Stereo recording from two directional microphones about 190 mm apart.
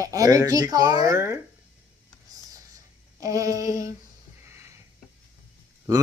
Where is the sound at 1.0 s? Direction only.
15° right (ahead or behind).